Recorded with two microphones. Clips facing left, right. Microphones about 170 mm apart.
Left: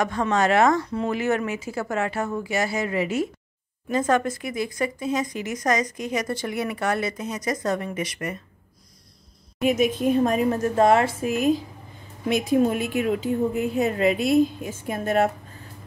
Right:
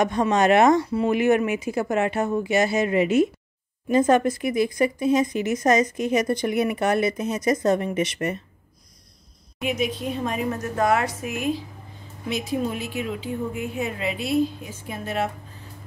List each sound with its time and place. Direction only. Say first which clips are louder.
0.0 s speech: right 2 dB; 20° right (ahead or behind)
0.8 s speech: right 4 dB; 5° right (ahead or behind); by 8.4 s 25° right (ahead or behind)
9.6 s a woman's voice: left 5 dB; 45° left (ahead or behind)
10.6 s a woman's voice: left 3 dB; 30° left (ahead or behind)
12.3 s a woman's voice: left 6 dB; 50° left (ahead or behind)
13.6 s a woman's voice: left 6 dB; 40° left (ahead or behind)